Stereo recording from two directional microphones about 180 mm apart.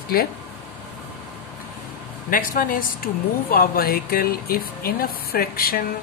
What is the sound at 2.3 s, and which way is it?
Speech, 50° left (ahead or behind).